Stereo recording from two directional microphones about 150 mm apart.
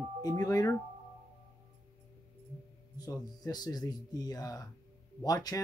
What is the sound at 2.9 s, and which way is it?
Speech, 25° left (ahead or behind).